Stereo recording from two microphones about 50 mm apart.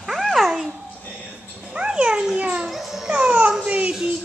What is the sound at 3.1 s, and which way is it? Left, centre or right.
Baby cry, right.